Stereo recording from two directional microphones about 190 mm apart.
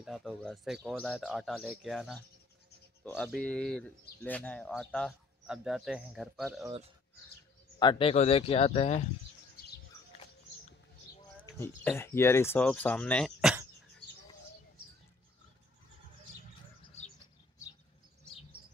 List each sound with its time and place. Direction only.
0.0 s speech: centre (ahead or behind)
7.8 s speech: 25° left (ahead or behind)
11.5 s speech: 10° left (ahead or behind)